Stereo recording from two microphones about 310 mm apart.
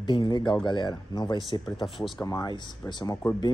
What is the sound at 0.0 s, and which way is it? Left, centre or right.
Speech, centre.